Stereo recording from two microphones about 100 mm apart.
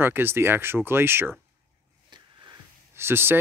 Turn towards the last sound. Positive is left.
turn(degrees=-25)  # may be behind; listen again after turning